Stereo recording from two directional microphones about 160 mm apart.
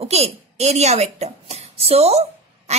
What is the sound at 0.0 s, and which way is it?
A woman's voice, 40° right (ahead or behind).